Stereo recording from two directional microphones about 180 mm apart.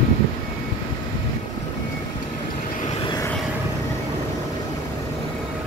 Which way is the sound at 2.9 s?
30° left (ahead or behind).